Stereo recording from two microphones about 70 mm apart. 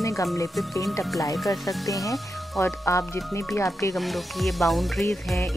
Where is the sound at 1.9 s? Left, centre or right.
Left.